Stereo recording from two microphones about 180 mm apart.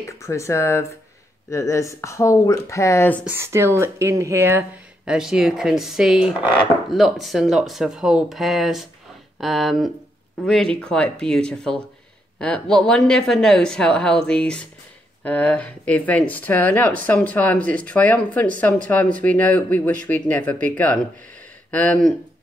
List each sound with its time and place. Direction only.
0.0 s speech: 15° left (ahead or behind)
3.3 s speech: 15° right (ahead or behind); by 22.1 s 5° left (ahead or behind)